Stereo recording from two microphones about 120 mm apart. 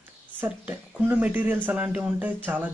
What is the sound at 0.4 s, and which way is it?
Speech, 15° right (ahead or behind).